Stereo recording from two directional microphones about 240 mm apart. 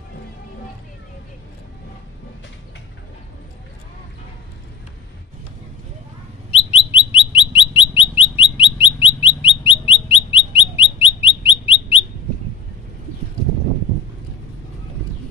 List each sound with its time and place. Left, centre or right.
6.7 s bird: left